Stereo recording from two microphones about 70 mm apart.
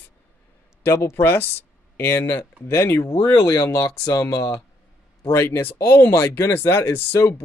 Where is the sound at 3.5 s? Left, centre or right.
Left.